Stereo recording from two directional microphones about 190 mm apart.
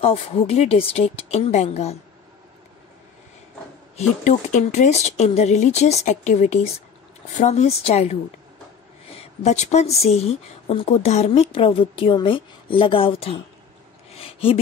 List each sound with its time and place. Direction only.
0.0 s a woman's voice: 30° left (ahead or behind)
3.9 s a woman's voice: 40° left (ahead or behind)
14.1 s a sound: 30° left (ahead or behind)